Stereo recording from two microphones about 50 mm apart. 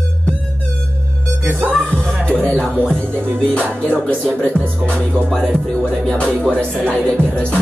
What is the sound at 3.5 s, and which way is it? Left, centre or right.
Music, left.